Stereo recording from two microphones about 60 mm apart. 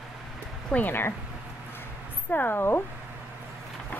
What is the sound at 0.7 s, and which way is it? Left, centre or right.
Speech, left.